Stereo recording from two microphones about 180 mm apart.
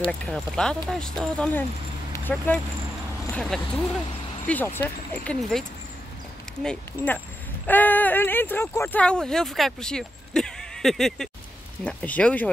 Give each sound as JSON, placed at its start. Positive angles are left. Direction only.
{"t": 0.2, "sound": "speech", "side_deg": 5}